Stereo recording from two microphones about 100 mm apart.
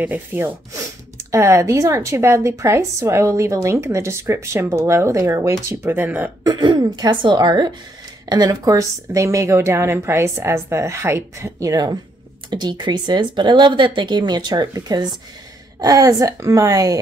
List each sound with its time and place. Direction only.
0.0 s a woman's voice: 20° right (ahead or behind)
6.4 s a woman's voice: 50° right (ahead or behind)